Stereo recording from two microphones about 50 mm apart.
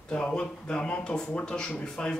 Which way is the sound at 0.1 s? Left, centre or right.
Centre.